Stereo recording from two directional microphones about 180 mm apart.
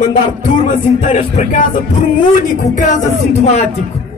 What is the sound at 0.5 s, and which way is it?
Speech, 45° left (ahead or behind).